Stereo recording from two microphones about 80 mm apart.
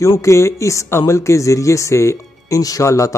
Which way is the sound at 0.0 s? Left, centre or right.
Left.